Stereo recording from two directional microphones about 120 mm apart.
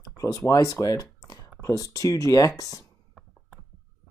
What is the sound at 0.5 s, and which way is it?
Speech, 30° left (ahead or behind).